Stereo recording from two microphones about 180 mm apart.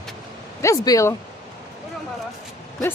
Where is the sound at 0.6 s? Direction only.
20° left (ahead or behind).